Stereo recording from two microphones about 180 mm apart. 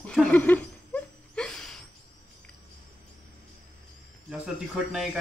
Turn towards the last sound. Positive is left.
turn(degrees=-5)  # may be behind; listen again after turning